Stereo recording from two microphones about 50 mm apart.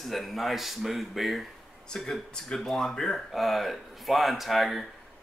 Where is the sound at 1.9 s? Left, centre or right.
Centre.